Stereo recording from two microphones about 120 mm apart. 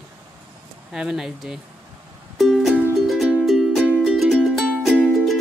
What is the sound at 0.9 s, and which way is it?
Speech, 5° right (ahead or behind).